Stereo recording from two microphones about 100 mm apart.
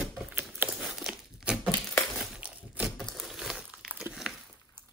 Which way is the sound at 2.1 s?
10° right (ahead or behind).